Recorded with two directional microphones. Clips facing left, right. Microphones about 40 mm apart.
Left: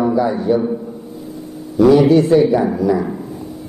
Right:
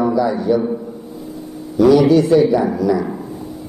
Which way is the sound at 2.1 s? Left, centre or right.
Left.